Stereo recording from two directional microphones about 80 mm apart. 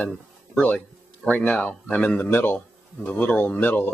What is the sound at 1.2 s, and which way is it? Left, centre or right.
A man's voice, centre.